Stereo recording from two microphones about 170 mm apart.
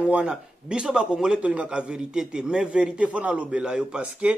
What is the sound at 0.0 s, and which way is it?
A man's voice, 5° right (ahead or behind).